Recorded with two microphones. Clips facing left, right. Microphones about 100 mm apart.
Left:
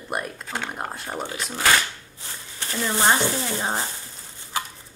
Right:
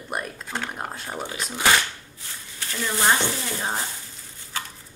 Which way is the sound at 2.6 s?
25° left (ahead or behind).